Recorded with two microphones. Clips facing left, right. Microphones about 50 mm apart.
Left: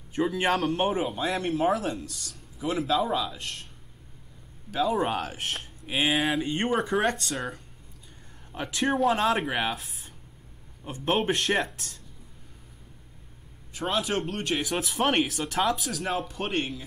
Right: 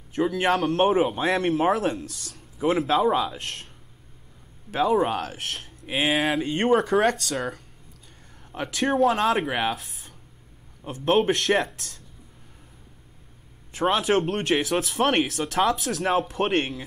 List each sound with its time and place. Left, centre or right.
0.1 s speech: centre
0.8 s speech: right
4.8 s speech: centre
8.6 s speech: centre
13.7 s speech: right
14.6 s speech: centre
15.9 s speech: right
16.3 s speech: right